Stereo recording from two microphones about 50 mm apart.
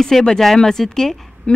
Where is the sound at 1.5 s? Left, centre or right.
Left.